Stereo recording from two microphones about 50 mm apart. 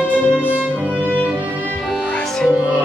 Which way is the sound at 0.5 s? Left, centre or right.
Right.